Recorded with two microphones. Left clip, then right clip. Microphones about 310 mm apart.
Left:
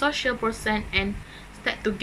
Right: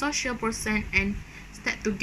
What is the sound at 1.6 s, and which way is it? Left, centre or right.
Speech, centre.